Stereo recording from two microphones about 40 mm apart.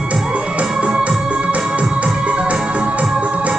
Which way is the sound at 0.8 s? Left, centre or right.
Right.